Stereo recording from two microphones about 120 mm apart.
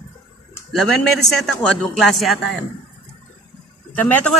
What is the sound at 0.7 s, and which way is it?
Speech, 5° left (ahead or behind).